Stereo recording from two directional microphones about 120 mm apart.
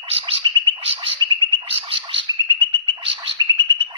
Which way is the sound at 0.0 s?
50° right (ahead or behind).